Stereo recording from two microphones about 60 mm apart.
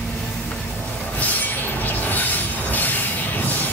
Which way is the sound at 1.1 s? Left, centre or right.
Left.